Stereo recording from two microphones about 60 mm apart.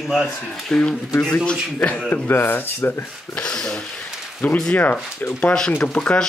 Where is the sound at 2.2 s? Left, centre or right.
Left.